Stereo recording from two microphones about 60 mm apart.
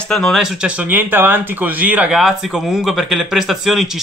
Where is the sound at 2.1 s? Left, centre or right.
Centre.